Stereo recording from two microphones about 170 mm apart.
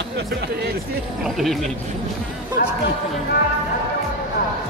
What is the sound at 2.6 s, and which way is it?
Speech, 60° left (ahead or behind).